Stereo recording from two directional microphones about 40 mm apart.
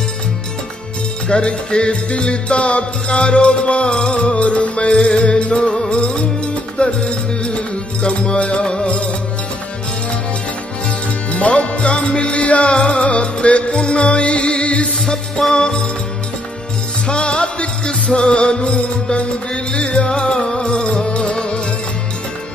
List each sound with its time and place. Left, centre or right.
1.3 s music: left
11.3 s music: left
15.0 s music: centre
17.1 s music: left